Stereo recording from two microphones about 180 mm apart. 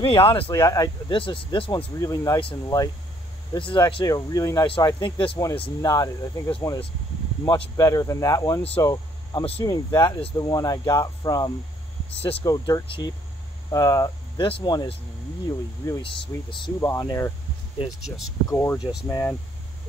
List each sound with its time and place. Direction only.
0.0 s speech: 30° left (ahead or behind)
0.5 s speech: 20° left (ahead or behind)
7.7 s speech: 20° left (ahead or behind)
8.8 s a sound: 20° left (ahead or behind)
9.4 s speech: 30° left (ahead or behind)
16.0 s speech: 30° left (ahead or behind)
18.5 s speech: 15° left (ahead or behind)
18.8 s speech: 5° right (ahead or behind)
19.0 s speech: 15° left (ahead or behind)